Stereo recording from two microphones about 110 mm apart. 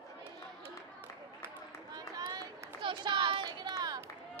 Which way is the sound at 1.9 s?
35° right (ahead or behind).